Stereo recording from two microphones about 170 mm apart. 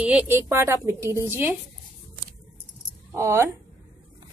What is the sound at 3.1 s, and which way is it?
Speech, 15° right (ahead or behind).